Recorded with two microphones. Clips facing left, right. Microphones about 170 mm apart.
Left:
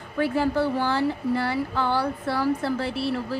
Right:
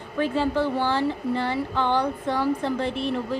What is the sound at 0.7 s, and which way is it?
Speech, 15° right (ahead or behind).